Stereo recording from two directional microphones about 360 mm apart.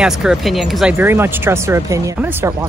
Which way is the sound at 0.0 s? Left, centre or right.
Centre.